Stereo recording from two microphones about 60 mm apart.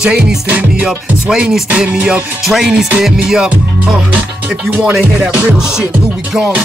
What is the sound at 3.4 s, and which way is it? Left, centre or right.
Music, right.